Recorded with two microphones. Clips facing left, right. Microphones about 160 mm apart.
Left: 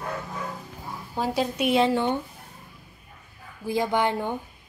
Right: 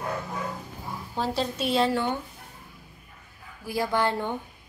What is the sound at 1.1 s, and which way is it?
A woman's voice, 10° left (ahead or behind).